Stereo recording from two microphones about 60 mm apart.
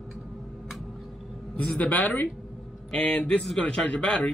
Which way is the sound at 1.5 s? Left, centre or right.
Left.